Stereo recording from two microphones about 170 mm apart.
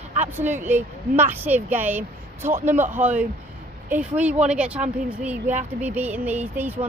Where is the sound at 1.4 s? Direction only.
10° right (ahead or behind).